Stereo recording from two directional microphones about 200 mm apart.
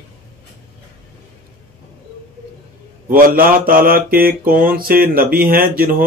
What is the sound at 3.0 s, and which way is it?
A man's voice, 45° right (ahead or behind).